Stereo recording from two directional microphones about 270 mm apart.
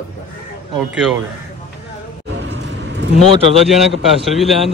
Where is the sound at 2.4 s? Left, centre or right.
Right.